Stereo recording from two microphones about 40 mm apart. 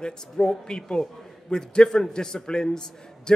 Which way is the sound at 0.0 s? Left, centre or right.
Centre.